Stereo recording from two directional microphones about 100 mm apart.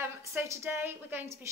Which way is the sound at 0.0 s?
20° right (ahead or behind).